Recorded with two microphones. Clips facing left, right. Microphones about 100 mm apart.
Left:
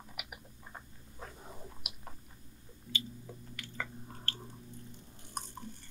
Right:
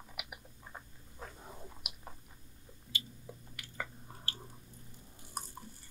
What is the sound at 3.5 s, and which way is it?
Chewing, 10° right (ahead or behind).